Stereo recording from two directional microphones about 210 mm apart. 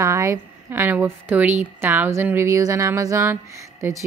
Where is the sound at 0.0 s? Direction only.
15° right (ahead or behind).